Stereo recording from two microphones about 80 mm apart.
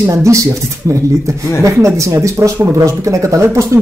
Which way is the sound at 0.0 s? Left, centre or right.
Right.